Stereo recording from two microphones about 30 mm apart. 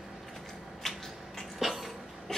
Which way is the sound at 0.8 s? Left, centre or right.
Centre.